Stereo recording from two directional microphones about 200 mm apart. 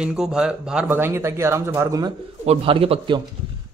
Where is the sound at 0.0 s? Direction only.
5° right (ahead or behind).